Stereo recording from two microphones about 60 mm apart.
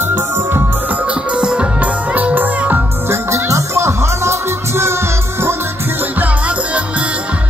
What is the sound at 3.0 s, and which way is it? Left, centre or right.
Music, right.